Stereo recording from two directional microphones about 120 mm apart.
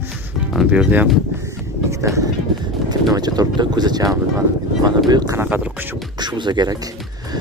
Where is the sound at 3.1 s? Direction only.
30° right (ahead or behind).